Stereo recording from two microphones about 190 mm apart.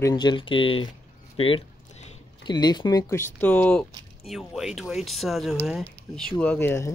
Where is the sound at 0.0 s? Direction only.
20° left (ahead or behind).